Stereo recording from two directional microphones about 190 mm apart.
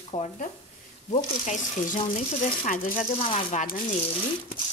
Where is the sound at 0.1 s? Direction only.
35° left (ahead or behind).